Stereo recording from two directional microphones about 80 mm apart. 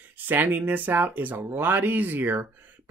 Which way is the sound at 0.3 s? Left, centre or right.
Right.